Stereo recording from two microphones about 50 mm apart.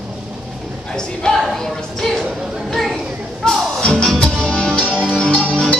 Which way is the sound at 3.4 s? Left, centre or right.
Centre.